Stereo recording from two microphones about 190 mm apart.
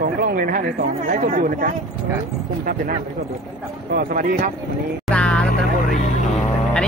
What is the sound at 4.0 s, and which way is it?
Speech, 45° right (ahead or behind).